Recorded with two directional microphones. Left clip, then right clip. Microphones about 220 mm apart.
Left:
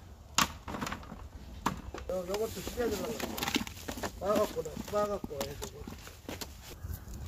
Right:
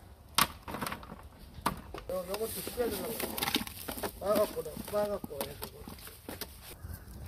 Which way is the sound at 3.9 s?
Centre (ahead or behind).